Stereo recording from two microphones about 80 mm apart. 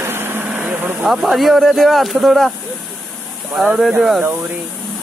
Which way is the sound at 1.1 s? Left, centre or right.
Centre.